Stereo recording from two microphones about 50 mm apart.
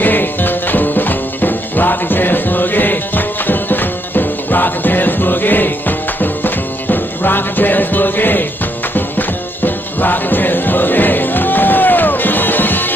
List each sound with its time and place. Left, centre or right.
0.0 s music: left
9.9 s music: left